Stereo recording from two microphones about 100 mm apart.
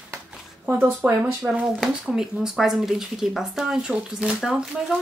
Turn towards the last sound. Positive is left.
turn(degrees=-5)  # may be behind; listen again after turning